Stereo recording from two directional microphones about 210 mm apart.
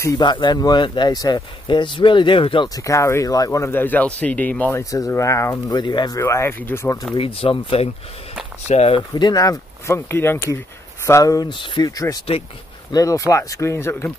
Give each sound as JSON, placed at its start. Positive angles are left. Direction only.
{"t": 0.0, "sound": "speech", "side_deg": 20}
{"t": 7.2, "sound": "speech", "side_deg": 25}